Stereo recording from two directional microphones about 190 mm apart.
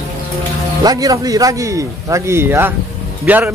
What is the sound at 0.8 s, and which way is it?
Speech, 20° right (ahead or behind).